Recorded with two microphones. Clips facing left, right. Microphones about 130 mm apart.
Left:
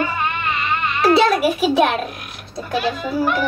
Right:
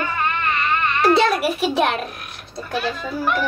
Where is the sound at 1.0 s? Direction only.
Centre (ahead or behind).